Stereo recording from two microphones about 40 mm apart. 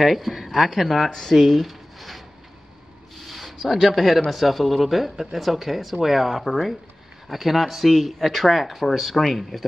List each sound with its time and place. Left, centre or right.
0.0 s speech: centre
3.3 s a sound: centre
3.8 s speech: centre